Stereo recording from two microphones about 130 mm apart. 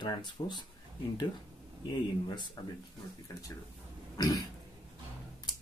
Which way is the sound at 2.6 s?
35° left (ahead or behind).